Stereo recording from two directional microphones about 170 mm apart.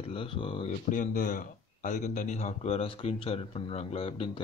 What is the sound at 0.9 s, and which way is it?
Speech, 50° left (ahead or behind).